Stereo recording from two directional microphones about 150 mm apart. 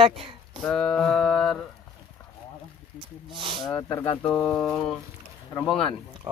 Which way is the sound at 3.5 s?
Centre (ahead or behind).